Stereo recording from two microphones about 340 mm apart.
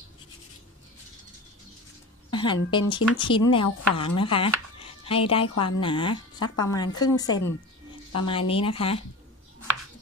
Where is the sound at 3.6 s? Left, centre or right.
Left.